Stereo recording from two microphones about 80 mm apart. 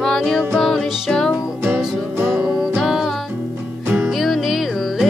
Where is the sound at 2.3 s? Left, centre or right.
Centre.